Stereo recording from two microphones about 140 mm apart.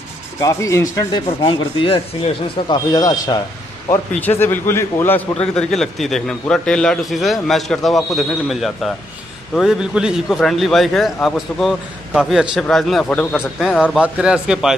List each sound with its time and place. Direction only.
0.4 s speech: 25° left (ahead or behind)
3.9 s a man's voice: 15° left (ahead or behind); by 14.8 s 5° right (ahead or behind)